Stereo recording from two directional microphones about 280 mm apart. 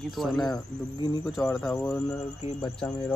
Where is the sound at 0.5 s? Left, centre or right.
Centre.